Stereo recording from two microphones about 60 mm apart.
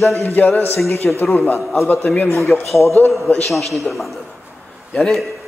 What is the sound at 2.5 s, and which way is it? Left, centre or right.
Music, left.